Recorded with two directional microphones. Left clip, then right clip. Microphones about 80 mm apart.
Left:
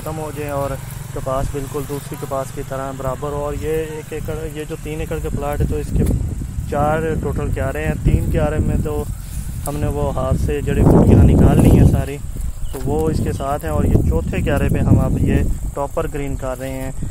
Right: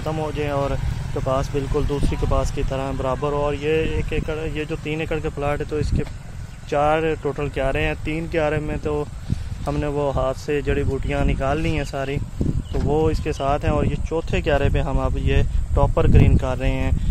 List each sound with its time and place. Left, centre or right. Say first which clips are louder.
0.0 s speech: right 1 dB; centre; by 2.4 s right
3.6 s speech: even; centre
6.7 s speech: even; right
9.8 s speech: even; centre; by 16.9 s right